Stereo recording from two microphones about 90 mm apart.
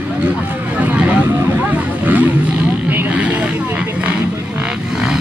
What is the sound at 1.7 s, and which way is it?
Roaring cats, 20° right (ahead or behind).